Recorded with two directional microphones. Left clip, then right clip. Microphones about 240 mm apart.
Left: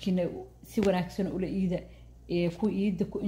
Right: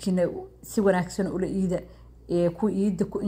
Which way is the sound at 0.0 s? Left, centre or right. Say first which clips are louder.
Right 6 dB; centre.